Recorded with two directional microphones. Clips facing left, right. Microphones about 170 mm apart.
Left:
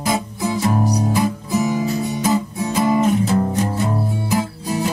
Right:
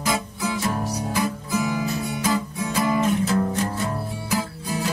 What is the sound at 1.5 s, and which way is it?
Guitar, 20° left (ahead or behind).